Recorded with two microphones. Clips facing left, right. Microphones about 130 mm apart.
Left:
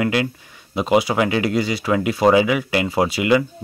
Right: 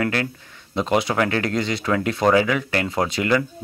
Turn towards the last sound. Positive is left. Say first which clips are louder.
# left 3 dB
turn(degrees=10)  # may be behind; listen again after turning